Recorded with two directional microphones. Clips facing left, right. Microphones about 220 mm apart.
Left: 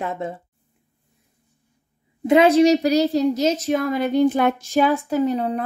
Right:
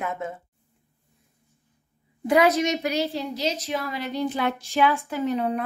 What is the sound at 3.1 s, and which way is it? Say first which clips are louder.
Speech: left 9 dB; 45° left (ahead or behind).